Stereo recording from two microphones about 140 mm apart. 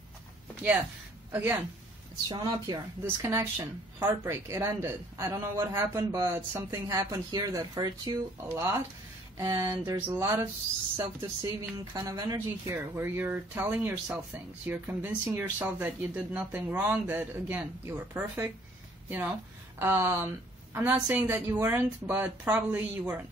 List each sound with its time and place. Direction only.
1.3 s speech: 20° right (ahead or behind)
2.2 s a woman's voice: 30° right (ahead or behind)
11.9 s a woman's voice: 30° right (ahead or behind)
12.4 s speech: 15° right (ahead or behind)